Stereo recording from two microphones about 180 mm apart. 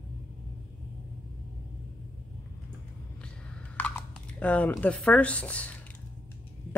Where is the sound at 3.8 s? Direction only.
5° left (ahead or behind).